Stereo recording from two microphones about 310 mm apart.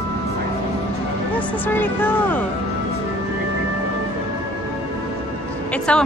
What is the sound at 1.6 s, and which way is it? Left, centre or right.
Speech, centre.